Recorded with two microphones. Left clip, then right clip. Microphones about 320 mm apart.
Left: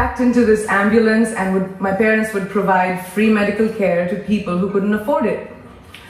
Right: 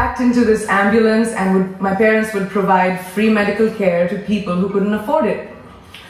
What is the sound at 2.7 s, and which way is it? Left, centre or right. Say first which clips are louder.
Speech: right 2 dB; centre.